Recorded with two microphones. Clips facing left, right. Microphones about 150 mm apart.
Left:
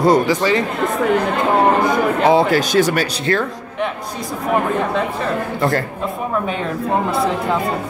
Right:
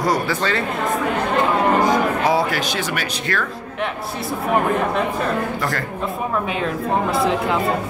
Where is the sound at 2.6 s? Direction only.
40° left (ahead or behind).